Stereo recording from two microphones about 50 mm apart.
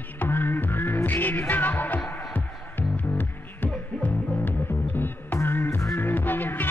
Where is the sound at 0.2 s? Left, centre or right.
Left.